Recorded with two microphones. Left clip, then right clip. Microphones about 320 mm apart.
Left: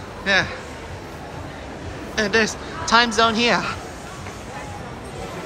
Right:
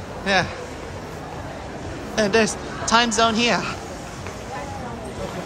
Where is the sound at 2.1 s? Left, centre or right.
Centre.